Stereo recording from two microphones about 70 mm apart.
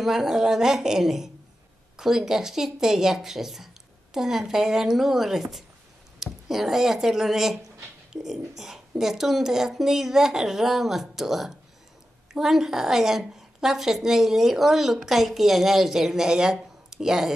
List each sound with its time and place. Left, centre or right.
0.0 s a woman's voice: centre